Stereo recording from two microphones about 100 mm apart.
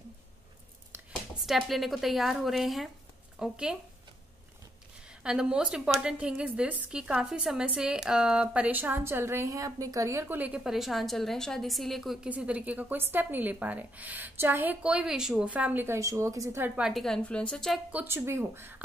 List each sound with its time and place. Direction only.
1.4 s a woman's voice: centre (ahead or behind)
5.2 s a woman's voice: 10° right (ahead or behind)
12.3 s a woman's voice: 15° right (ahead or behind)
16.0 s a woman's voice: 30° right (ahead or behind)
16.6 s a woman's voice: 10° right (ahead or behind)
16.9 s a woman's voice: 5° left (ahead or behind)
17.9 s speech: 25° right (ahead or behind)